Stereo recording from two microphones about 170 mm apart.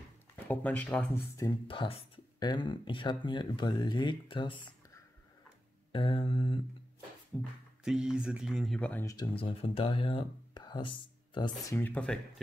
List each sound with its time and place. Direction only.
0.5 s speech: 10° left (ahead or behind)
1.3 s speech: 25° left (ahead or behind)
5.9 s mantra: 30° left (ahead or behind)
7.3 s speech: 5° left (ahead or behind)
9.0 s speech: 25° left (ahead or behind)
11.7 s speech: 10° left (ahead or behind)